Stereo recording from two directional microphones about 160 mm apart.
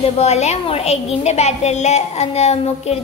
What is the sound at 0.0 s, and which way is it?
A child's voice, 40° left (ahead or behind).